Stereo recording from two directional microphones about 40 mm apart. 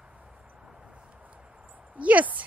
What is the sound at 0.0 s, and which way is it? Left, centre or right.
Vehicle, right.